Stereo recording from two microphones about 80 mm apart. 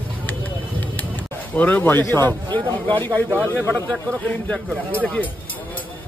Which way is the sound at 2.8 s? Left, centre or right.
Left.